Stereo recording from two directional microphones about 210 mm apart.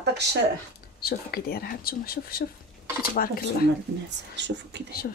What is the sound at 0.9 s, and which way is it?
Speech, 45° left (ahead or behind).